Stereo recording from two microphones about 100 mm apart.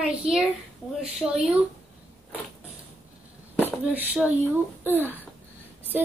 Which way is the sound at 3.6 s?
15° right (ahead or behind).